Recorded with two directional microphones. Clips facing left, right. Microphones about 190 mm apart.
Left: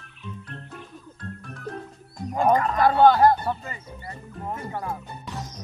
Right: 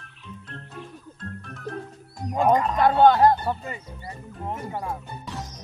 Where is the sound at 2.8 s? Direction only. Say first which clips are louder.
Even; 20° right (ahead or behind).